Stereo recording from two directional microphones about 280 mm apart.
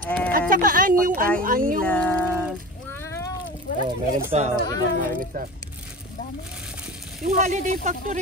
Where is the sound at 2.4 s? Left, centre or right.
Centre.